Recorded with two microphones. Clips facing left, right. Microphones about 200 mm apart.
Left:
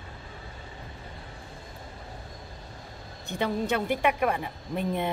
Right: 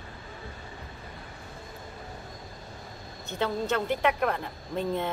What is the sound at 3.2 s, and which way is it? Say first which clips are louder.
Speech: left 1 dB; 15° left (ahead or behind).